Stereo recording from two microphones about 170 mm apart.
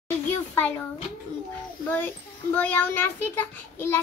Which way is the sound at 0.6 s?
10° left (ahead or behind).